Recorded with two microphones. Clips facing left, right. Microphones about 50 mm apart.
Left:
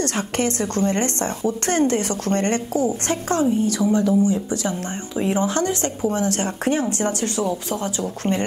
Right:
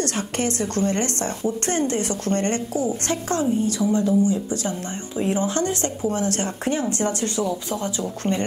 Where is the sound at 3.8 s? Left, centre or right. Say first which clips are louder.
Left 2 dB; centre.